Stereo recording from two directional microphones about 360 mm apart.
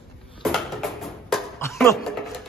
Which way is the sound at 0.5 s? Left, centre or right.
Centre.